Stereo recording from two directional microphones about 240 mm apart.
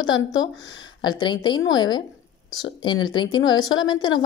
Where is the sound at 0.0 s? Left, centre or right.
Centre.